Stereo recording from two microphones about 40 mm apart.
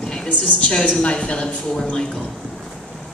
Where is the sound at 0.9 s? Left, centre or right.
Left.